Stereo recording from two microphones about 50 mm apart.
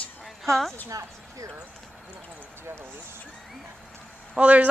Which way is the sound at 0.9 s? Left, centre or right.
Right.